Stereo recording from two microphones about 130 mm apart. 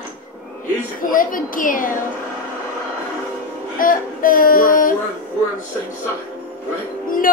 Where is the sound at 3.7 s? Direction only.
90° left.